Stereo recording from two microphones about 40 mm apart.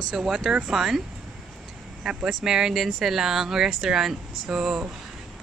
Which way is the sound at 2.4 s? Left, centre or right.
Centre.